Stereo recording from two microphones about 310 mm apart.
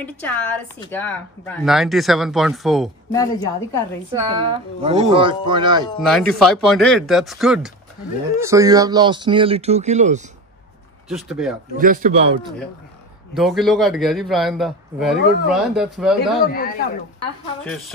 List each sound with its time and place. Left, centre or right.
0.0 s a man's voice: centre
3.1 s speech: centre
4.2 s speech: centre
6.0 s a man's voice: centre; by 10.2 s right
11.1 s a man's voice: centre
11.7 s a man's voice: right
13.3 s a man's voice: centre
16.4 s speech: left